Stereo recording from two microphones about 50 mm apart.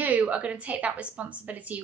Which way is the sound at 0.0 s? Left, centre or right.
Right.